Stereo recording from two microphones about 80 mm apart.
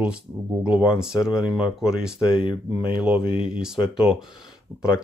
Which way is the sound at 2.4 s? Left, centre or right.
Left.